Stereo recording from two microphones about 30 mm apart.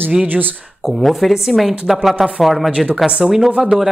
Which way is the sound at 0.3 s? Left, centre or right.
Right.